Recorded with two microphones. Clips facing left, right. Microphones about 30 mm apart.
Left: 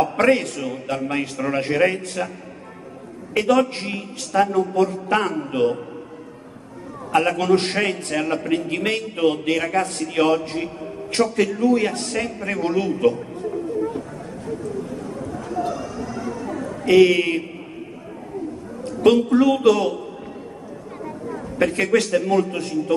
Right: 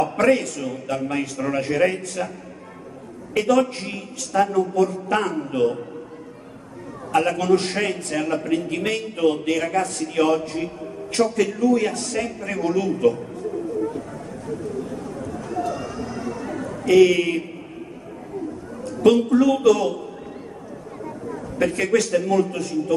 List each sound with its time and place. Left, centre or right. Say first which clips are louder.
0.0 s a man's voice: left 1 dB; left
3.3 s a man's voice: left 1 dB; left
7.1 s a man's voice: left 1 dB; left
16.8 s a man's voice: left 1 dB; left
19.3 s a man's voice: left 1 dB; left
21.5 s a man's voice: left 1 dB; left